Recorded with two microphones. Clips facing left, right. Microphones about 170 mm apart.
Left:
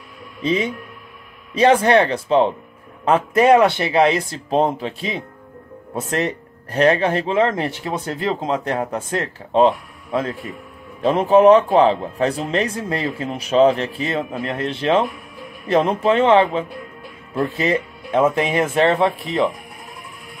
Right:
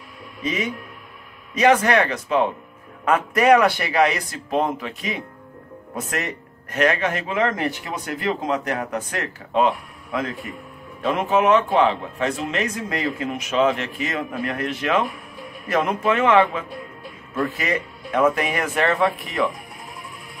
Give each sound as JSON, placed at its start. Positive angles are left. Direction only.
{"t": 0.4, "sound": "a man's voice", "side_deg": 30}